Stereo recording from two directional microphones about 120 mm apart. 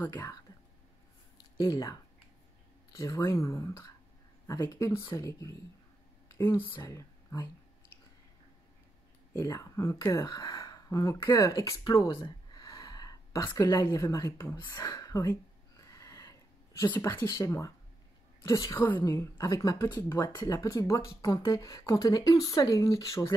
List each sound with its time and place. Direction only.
0.1 s speech: 35° left (ahead or behind)
1.6 s speech: 35° left (ahead or behind)
3.0 s speech: 25° left (ahead or behind)
6.2 s a sound: 20° left (ahead or behind)
6.8 s speech: 25° left (ahead or behind)
9.5 s speech: 25° left (ahead or behind)
12.1 s a sound: 35° left (ahead or behind)
14.0 s speech: 30° left (ahead or behind)
14.7 s speech: 35° left (ahead or behind)
15.9 s a sound: 30° left (ahead or behind)
16.9 s a woman's voice: 15° left (ahead or behind)
18.8 s speech: 15° left (ahead or behind)
20.3 s speech: 35° left (ahead or behind)